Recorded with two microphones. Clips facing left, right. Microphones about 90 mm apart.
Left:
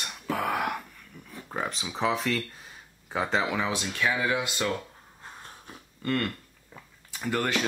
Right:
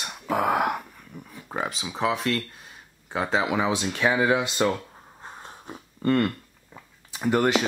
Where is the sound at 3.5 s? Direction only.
20° right (ahead or behind).